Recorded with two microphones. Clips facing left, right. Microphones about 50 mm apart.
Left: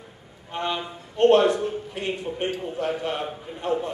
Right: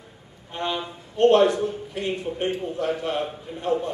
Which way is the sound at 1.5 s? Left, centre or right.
Left.